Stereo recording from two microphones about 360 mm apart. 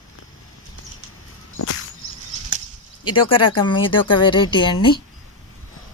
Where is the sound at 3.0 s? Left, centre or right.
Centre.